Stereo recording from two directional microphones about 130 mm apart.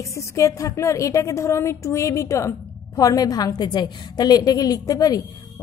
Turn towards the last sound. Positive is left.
turn(degrees=30)  # may be behind; listen again after turning